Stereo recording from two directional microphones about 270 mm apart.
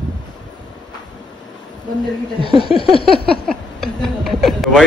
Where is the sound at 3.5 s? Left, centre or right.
Centre.